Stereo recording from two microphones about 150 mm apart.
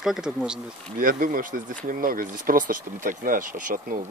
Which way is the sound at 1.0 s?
65° right (ahead or behind).